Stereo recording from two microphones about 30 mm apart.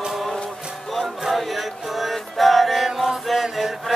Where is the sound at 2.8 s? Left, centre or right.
Centre.